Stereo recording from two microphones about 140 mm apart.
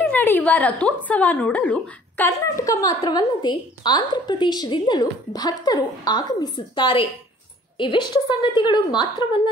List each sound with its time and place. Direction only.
0.0 s a woman's voice: 15° left (ahead or behind); by 9.4 s 35° left (ahead or behind)